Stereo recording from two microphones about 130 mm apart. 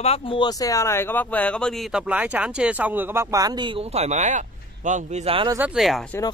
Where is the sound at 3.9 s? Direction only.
55° right (ahead or behind).